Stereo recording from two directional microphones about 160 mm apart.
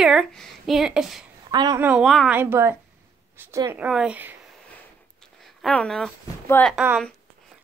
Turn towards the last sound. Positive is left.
turn(degrees=5)  # may be behind; listen again after turning